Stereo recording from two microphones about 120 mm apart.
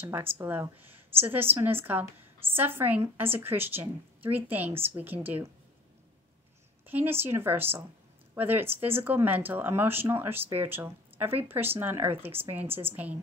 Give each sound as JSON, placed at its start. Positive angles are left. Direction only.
{"t": 0.1, "sound": "speech", "side_deg": -15}
{"t": 6.9, "sound": "speech", "side_deg": -15}